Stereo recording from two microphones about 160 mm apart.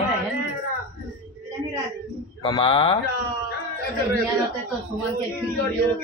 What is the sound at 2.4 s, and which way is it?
Speech, 35° left (ahead or behind).